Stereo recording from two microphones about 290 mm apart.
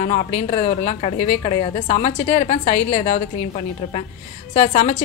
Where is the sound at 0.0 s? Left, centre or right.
Left.